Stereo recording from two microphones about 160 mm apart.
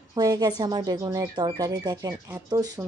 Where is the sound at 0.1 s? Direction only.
25° right (ahead or behind).